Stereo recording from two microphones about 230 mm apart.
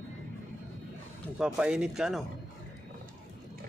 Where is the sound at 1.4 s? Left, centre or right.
Centre.